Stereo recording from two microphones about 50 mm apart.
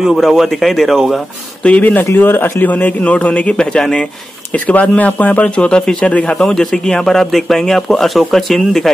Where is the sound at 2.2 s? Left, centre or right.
Left.